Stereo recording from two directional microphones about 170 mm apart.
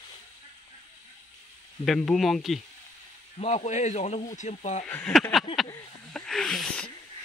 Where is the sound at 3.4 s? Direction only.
40° left (ahead or behind).